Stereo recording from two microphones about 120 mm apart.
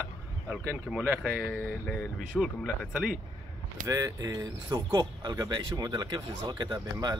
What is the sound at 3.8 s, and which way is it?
Speech, 30° right (ahead or behind).